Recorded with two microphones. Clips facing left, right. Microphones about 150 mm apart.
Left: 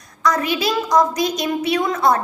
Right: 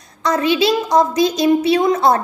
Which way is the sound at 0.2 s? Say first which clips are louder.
Right 4 dB; 25° right (ahead or behind).